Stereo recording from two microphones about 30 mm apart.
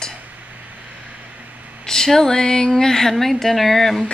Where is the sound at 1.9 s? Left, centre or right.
Centre.